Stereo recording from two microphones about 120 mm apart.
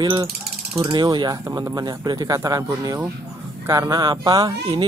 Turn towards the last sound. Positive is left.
turn(degrees=-35)  # may be behind; listen again after turning